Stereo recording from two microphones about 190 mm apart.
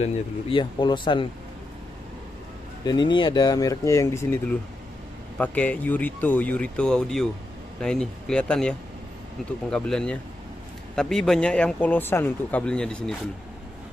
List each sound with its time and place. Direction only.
0.0 s speech: 25° left (ahead or behind)
2.8 s speech: 20° left (ahead or behind); by 13.1 s 5° left (ahead or behind)